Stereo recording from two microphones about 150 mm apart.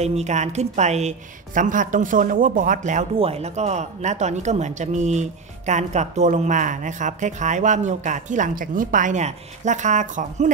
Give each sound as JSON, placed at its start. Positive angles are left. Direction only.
{"t": 0.0, "sound": "a woman's voice", "side_deg": -45}
{"t": 3.2, "sound": "speech", "side_deg": -45}